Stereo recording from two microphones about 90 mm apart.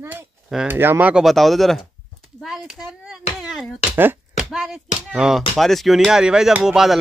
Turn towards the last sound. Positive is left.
turn(degrees=-5)  # may be behind; listen again after turning